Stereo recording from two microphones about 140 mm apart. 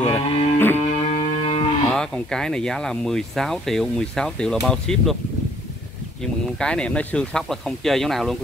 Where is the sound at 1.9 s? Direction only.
5° left (ahead or behind).